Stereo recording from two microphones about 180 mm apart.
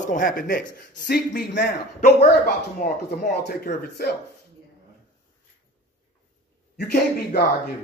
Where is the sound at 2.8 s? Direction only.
45° left (ahead or behind).